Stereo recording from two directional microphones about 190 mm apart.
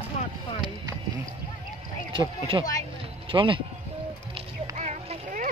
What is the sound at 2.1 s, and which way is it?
Speech, 30° right (ahead or behind).